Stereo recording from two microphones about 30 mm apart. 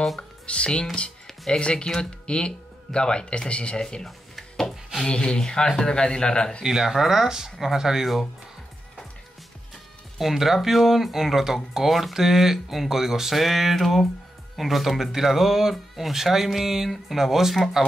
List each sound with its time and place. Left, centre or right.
0.5 s speech: left
3.8 s a man's voice: left
4.4 s wood: centre
5.0 s a man's voice: left
6.6 s speech: centre
10.1 s speech: centre
13.4 s a sound: centre
14.6 s speech: centre